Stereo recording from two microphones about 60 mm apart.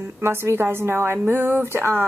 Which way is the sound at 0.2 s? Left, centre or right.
Right.